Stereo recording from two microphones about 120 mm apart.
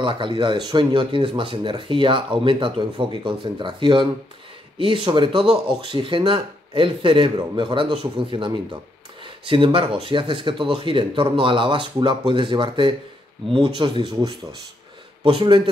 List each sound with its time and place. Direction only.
0.0 s speech: 45° right (ahead or behind)
15.2 s speech: 45° right (ahead or behind)